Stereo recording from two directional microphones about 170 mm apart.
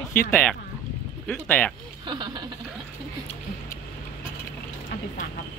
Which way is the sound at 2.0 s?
25° right (ahead or behind).